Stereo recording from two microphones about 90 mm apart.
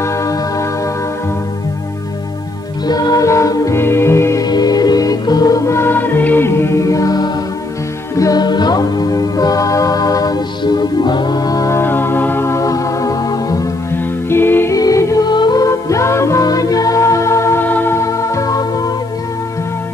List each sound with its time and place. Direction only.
0.0 s music: 35° left (ahead or behind)
2.9 s music: 45° left (ahead or behind)
3.7 s music: 25° left (ahead or behind)
4.4 s music: 50° left (ahead or behind)
11.7 s music: 25° left (ahead or behind); by 13.6 s 40° left (ahead or behind)
13.9 s music: 25° left (ahead or behind)
14.8 s music: 35° left (ahead or behind)
15.2 s music: 55° left (ahead or behind)
15.6 s music: 35° left (ahead or behind)